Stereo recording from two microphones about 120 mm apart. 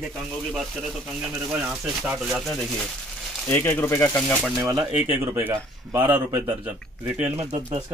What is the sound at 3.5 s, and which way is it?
Speech, 20° left (ahead or behind).